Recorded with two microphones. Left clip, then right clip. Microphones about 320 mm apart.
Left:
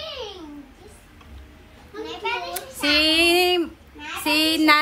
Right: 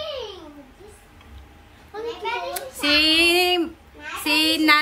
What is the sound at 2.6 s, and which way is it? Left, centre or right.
Child singing, centre.